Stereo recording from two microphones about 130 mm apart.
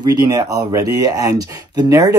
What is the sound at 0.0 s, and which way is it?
Speech, 30° right (ahead or behind).